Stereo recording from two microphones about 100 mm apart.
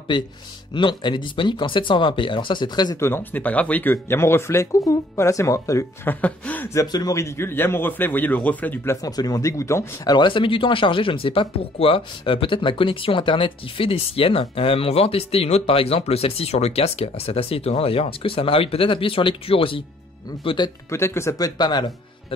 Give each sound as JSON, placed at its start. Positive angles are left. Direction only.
{"t": 0.1, "sound": "speech", "side_deg": 50}
{"t": 3.0, "sound": "speech", "side_deg": 20}
{"t": 6.0, "sound": "speech", "side_deg": 15}
{"t": 6.7, "sound": "speech", "side_deg": 35}
{"t": 9.0, "sound": "speech", "side_deg": 40}
{"t": 10.0, "sound": "speech", "side_deg": 50}
{"t": 20.4, "sound": "speech", "side_deg": 50}
{"t": 20.9, "sound": "speech", "side_deg": 25}